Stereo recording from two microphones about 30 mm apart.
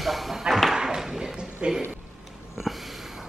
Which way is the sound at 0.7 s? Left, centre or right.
Centre.